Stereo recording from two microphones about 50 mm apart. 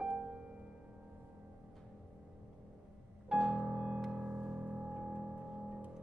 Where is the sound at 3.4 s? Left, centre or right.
Right.